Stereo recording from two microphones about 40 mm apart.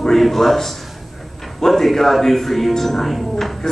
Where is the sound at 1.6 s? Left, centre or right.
Centre.